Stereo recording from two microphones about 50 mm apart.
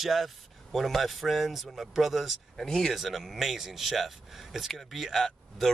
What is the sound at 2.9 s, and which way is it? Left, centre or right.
Speech, centre.